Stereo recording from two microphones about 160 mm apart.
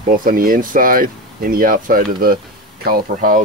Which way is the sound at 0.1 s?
60° right (ahead or behind).